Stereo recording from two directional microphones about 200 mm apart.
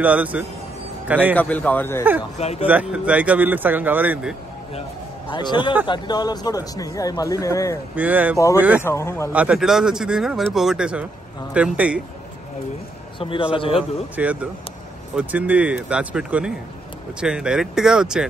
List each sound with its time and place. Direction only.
0.0 s a man's voice: 5° right (ahead or behind)
1.3 s speech: 10° left (ahead or behind)
2.3 s speech: 30° left (ahead or behind)
2.6 s speech: 5° right (ahead or behind)
5.3 s a man's voice: 20° left (ahead or behind)
7.9 s speech: 10° right (ahead or behind)
8.8 s speech: 15° left (ahead or behind)
9.3 s speech: 5° right (ahead or behind)
13.2 s a man's voice: 25° left (ahead or behind)
14.1 s speech: 5° right (ahead or behind)